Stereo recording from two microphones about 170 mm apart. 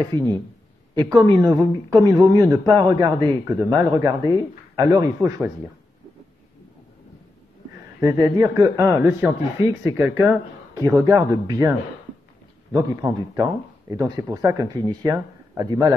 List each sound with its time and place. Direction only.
0.1 s speech: 25° right (ahead or behind)
8.0 s speech: 20° right (ahead or behind)
12.7 s speech: 20° right (ahead or behind)